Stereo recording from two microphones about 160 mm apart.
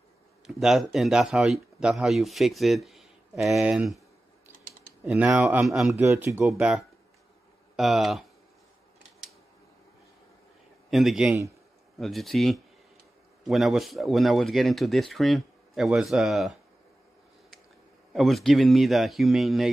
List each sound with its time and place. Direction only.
0.6 s speech: centre (ahead or behind)
5.0 s speech: 10° right (ahead or behind)
5.9 s speech: 15° right (ahead or behind)
10.9 s speech: centre (ahead or behind)
18.1 s speech: centre (ahead or behind)